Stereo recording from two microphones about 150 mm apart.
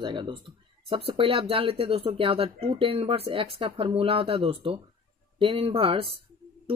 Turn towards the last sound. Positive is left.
turn(degrees=-35)  # may be behind; listen again after turning